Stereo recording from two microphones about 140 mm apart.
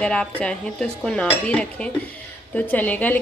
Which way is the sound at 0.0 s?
5° left (ahead or behind).